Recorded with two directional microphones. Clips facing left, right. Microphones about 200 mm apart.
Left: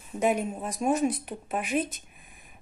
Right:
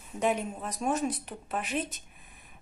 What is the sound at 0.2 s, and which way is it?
Speech, 10° left (ahead or behind).